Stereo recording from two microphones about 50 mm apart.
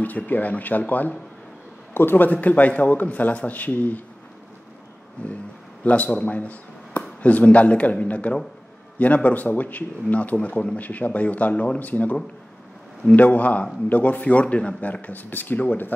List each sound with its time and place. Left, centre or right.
0.0 s a man's voice: left
2.3 s a man's voice: left
5.9 s a man's voice: left